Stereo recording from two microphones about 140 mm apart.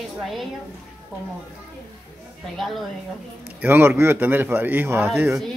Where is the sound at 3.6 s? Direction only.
15° right (ahead or behind).